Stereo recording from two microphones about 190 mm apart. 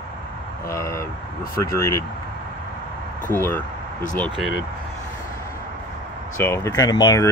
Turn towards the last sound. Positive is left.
turn(degrees=20)  # may be behind; listen again after turning